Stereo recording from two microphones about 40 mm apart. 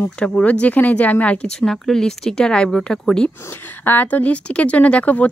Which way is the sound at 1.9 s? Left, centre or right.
Centre.